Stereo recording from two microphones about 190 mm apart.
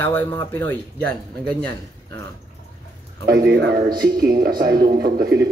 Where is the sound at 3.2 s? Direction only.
55° right (ahead or behind).